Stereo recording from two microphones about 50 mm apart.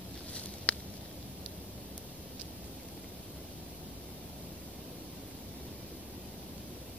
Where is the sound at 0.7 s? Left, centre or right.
Left.